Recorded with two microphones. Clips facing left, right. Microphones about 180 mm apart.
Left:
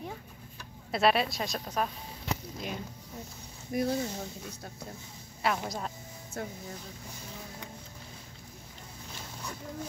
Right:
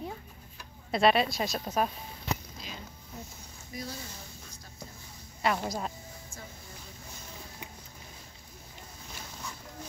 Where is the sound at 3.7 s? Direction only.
55° left (ahead or behind).